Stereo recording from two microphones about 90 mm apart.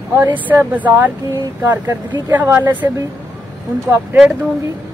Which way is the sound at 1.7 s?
40° right (ahead or behind).